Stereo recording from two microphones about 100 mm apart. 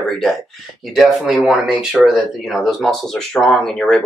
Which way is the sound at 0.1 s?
Centre (ahead or behind).